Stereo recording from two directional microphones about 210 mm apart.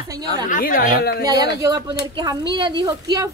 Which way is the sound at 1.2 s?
20° right (ahead or behind).